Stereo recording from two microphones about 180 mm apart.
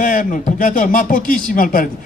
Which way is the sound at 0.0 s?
45° left (ahead or behind).